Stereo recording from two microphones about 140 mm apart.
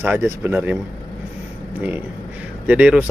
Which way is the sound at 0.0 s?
15° right (ahead or behind).